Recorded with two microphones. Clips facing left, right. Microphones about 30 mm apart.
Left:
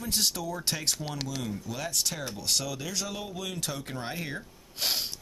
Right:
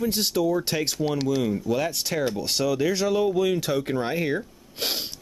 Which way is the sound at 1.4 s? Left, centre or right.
Right.